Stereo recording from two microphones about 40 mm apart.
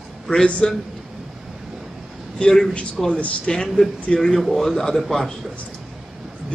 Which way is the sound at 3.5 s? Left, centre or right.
Centre.